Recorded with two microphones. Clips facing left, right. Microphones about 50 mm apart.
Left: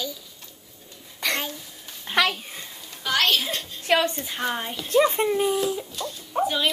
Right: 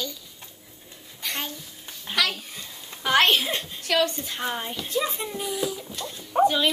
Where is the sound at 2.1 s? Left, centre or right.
Left.